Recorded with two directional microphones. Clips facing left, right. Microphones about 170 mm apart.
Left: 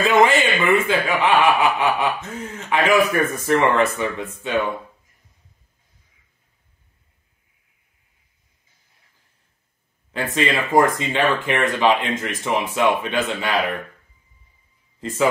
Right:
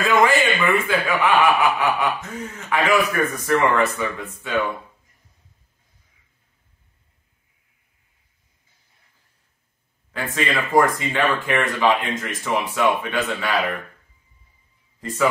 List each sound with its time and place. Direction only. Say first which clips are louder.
0.0 s a man's voice: left 2 dB; 20° left (ahead or behind)
10.3 s speech: left 1 dB; 20° left (ahead or behind)
15.0 s speech: left 2 dB; 25° left (ahead or behind)